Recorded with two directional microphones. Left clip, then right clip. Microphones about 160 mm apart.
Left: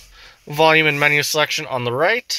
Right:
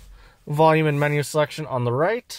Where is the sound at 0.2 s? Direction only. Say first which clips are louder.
Left 2 dB; 20° right (ahead or behind).